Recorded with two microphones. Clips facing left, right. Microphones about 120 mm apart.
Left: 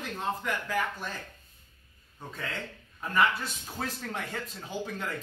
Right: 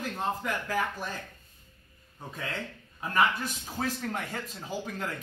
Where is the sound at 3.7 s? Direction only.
5° right (ahead or behind).